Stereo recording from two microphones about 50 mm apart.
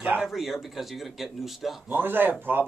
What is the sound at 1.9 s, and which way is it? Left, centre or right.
Speech, right.